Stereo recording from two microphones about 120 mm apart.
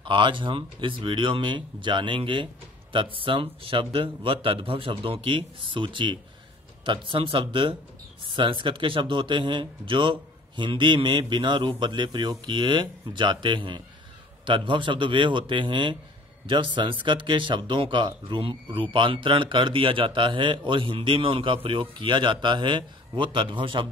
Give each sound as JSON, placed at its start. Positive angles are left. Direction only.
{"t": 0.0, "sound": "speech", "side_deg": -40}